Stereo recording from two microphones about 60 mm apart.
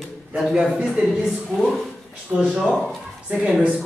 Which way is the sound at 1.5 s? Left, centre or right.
Centre.